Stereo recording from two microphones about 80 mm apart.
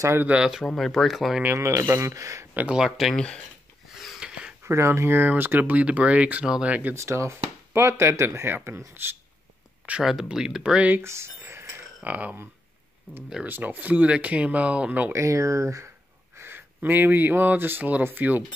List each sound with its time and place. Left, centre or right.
0.2 s speech: centre
0.7 s speech: centre
1.4 s speech: right
2.7 s speech: centre
3.9 s a sound: centre
4.6 s speech: right
7.0 s speech: right
9.8 s speech: centre
11.0 s speech: right
12.0 s speech: centre
13.5 s speech: right
15.1 s speech: right
16.3 s speech: right